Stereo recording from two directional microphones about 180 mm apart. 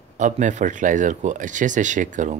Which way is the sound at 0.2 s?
45° right (ahead or behind).